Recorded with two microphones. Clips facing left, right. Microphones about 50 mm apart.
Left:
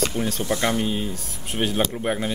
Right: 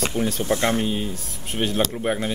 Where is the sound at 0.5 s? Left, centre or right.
Right.